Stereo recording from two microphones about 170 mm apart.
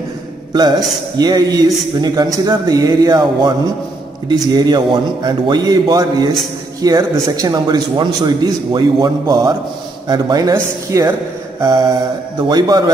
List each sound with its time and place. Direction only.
0.5 s a man's voice: 25° right (ahead or behind)
12.4 s a man's voice: 25° right (ahead or behind)